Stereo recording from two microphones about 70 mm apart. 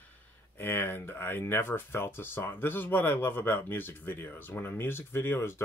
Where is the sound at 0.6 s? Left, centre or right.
Left.